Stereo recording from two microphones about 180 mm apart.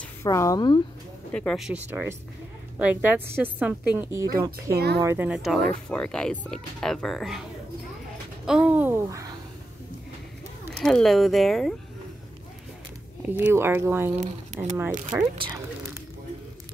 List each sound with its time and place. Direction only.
0.2 s speech: 15° left (ahead or behind)
1.3 s speech: 5° left (ahead or behind)
1.7 s a woman's voice: 10° right (ahead or behind)
4.7 s speech: 65° right (ahead or behind)
5.0 s a woman's voice: 10° right (ahead or behind)
5.4 s speech: centre (ahead or behind)
8.5 s a woman's voice: 5° right (ahead or behind)
10.8 s speech: 5° left (ahead or behind)
13.2 s a woman's voice: 10° right (ahead or behind)
14.1 s speech: 40° right (ahead or behind)
15.1 s speech: 25° right (ahead or behind)